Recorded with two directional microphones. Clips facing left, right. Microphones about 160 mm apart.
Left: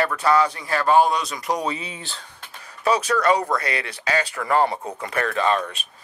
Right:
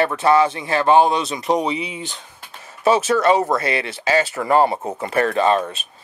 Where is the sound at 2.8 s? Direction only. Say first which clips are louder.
Right 4 dB; 25° right (ahead or behind).